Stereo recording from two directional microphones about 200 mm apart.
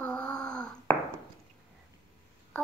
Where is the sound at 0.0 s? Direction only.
5° left (ahead or behind).